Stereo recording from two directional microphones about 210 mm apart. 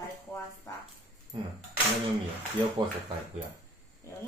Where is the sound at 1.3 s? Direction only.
25° right (ahead or behind).